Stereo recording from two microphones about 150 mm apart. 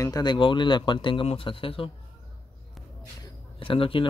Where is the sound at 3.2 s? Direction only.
35° left (ahead or behind).